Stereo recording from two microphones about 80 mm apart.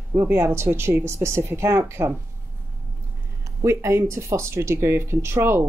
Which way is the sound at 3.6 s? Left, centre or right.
Right.